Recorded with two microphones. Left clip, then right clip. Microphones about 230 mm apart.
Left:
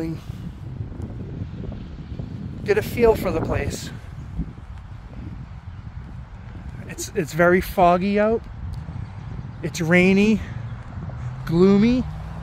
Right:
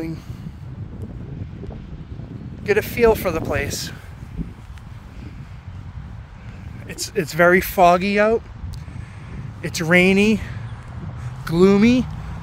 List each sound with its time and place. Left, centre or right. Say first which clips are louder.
2.6 s speech: right 2 dB; centre; by 3.9 s right
6.9 s speech: right 2 dB; right